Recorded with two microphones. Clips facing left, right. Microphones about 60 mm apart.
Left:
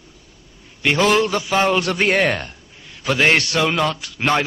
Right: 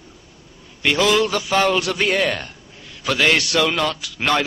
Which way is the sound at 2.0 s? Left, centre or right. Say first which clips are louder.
Left 2 dB; left.